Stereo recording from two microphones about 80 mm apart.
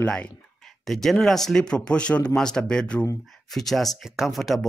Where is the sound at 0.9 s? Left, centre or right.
Centre.